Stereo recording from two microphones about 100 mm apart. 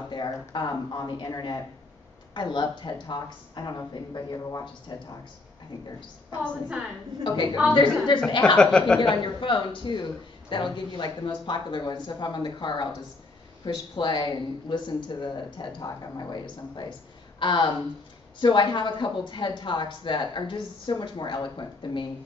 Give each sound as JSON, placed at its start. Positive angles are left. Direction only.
{"t": 0.1, "sound": "speech", "side_deg": 50}
{"t": 7.2, "sound": "speech", "side_deg": 50}
{"t": 8.5, "sound": "speech", "side_deg": 10}
{"t": 9.0, "sound": "speech", "side_deg": 50}